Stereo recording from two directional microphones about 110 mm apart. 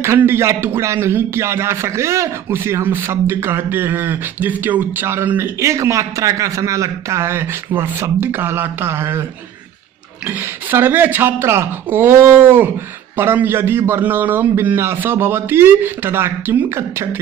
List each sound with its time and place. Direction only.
0.0 s a man's voice: 25° right (ahead or behind)
10.2 s a man's voice: 15° right (ahead or behind)